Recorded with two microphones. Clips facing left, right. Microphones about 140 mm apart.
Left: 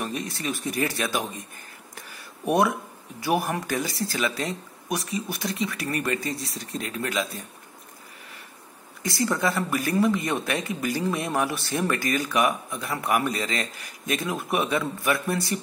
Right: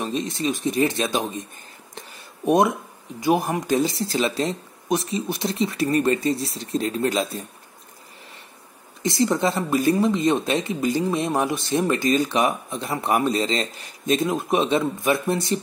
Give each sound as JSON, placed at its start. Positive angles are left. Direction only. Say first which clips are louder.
{"t": 0.0, "sound": "speech", "louder": "right 5 dB", "side_deg": -20}
{"t": 2.0, "sound": "a sound", "louder": "right 5 dB", "side_deg": -20}
{"t": 3.2, "sound": "speech", "louder": "right 4 dB", "side_deg": -20}
{"t": 9.0, "sound": "speech", "louder": "right 4 dB", "side_deg": -25}